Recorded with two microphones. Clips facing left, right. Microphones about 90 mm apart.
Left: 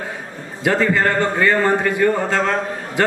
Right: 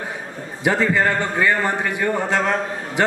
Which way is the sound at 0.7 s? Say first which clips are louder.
Left 1 dB; 15° right (ahead or behind).